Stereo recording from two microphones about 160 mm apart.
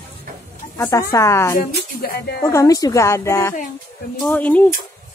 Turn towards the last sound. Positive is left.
turn(degrees=10)  # may be behind; listen again after turning